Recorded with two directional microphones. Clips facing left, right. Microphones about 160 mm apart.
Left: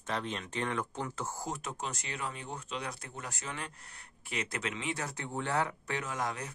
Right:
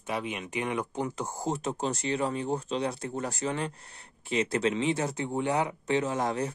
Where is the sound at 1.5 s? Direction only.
30° right (ahead or behind).